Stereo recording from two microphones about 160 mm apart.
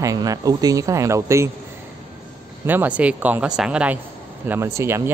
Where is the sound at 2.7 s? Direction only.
10° right (ahead or behind).